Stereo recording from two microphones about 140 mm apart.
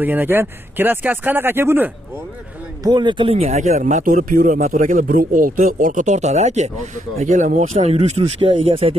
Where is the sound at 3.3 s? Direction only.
55° right (ahead or behind).